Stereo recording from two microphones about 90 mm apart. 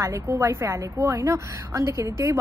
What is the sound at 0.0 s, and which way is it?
A woman's voice, 30° right (ahead or behind).